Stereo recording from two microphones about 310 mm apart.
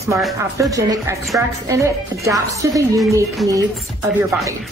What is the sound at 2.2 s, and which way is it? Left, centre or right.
Speech, centre.